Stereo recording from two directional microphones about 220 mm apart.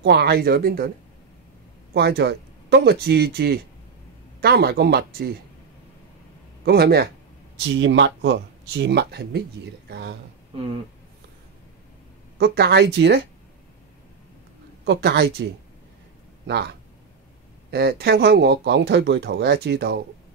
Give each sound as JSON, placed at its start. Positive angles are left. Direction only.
{"t": 0.0, "sound": "speech", "side_deg": -50}
{"t": 2.0, "sound": "speech", "side_deg": -45}
{"t": 6.6, "sound": "speech", "side_deg": -45}
{"t": 10.5, "sound": "speech", "side_deg": -25}
{"t": 12.4, "sound": "speech", "side_deg": -45}
{"t": 14.9, "sound": "speech", "side_deg": -50}
{"t": 17.6, "sound": "speech", "side_deg": -45}